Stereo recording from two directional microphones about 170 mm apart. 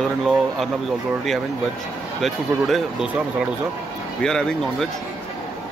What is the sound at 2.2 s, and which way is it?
Speech, centre (ahead or behind).